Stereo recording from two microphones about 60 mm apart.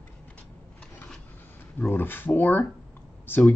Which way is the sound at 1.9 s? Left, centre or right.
Left.